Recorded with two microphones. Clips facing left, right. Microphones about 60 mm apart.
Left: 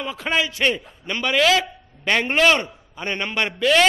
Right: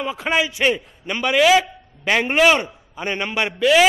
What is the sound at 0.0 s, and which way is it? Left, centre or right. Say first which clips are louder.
A man's voice: right 2 dB; centre.